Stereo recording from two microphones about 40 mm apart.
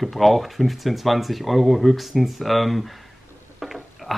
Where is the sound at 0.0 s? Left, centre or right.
Centre.